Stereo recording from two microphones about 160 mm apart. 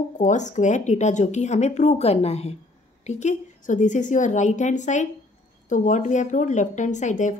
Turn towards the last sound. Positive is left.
turn(degrees=50)  # may be behind; listen again after turning